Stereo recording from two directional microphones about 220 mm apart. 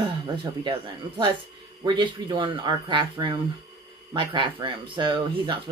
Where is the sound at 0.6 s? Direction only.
20° right (ahead or behind).